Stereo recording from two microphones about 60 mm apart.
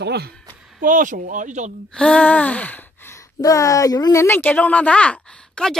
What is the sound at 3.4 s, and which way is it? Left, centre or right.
Speech, left.